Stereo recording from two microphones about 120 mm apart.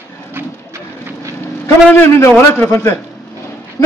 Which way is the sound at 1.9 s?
20° left (ahead or behind).